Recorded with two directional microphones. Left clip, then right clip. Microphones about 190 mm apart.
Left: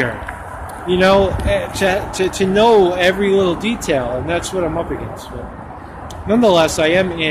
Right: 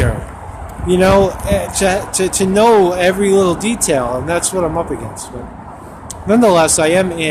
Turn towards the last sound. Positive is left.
turn(degrees=-15)  # may be behind; listen again after turning